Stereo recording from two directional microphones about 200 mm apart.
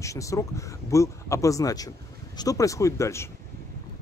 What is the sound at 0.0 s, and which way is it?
Speech, 15° left (ahead or behind).